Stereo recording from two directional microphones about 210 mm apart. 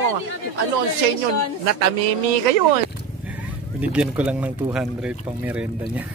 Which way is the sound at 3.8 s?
5° right (ahead or behind).